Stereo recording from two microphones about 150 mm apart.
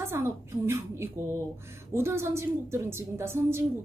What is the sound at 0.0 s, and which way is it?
A woman's voice, 15° right (ahead or behind).